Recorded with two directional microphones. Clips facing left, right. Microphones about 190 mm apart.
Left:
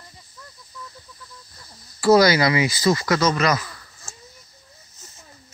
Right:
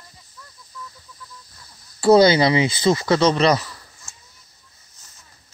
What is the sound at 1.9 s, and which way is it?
Speech, 30° right (ahead or behind).